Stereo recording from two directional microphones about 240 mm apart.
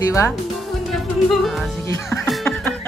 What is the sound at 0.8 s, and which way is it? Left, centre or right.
Speech, centre.